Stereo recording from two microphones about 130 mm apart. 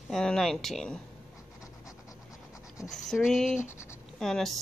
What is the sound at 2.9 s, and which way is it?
Speech, 5° left (ahead or behind).